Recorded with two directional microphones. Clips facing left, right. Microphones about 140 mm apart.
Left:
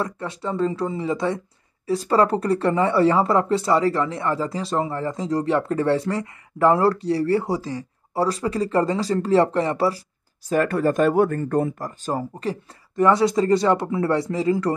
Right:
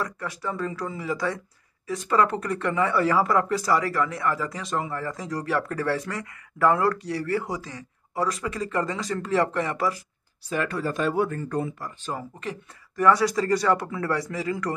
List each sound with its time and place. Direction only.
0.0 s speech: 25° left (ahead or behind)
10.5 s speech: 45° left (ahead or behind); by 14.7 s 30° left (ahead or behind)